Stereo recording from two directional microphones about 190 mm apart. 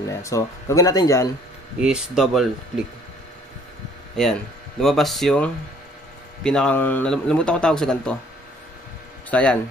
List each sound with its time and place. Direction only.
0.1 s speech: 15° left (ahead or behind)
1.8 s a man's voice: 5° right (ahead or behind)
4.2 s a man's voice: centre (ahead or behind)
9.3 s speech: 5° left (ahead or behind)